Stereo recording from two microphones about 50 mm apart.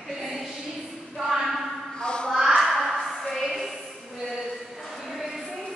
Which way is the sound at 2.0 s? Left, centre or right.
Centre.